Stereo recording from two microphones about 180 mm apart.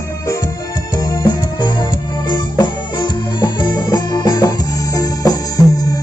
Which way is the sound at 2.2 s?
25° left (ahead or behind).